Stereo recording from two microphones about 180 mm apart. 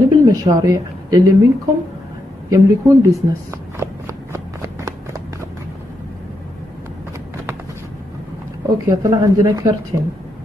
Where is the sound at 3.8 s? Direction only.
15° right (ahead or behind).